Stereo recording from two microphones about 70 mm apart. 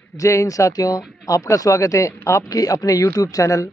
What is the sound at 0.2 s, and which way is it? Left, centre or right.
Speech, left.